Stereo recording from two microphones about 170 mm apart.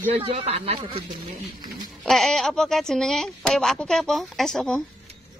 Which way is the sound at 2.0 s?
Centre (ahead or behind).